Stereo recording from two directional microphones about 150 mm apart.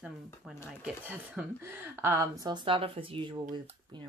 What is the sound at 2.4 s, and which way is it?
Speech, 30° right (ahead or behind).